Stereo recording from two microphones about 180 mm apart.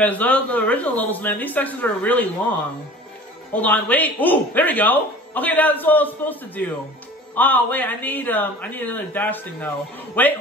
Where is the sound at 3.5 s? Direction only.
10° left (ahead or behind).